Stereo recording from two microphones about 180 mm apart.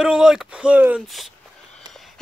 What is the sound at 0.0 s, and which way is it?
Speech, 5° right (ahead or behind).